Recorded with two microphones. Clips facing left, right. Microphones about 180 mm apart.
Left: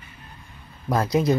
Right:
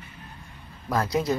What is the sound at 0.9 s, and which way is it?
Speech, 20° left (ahead or behind).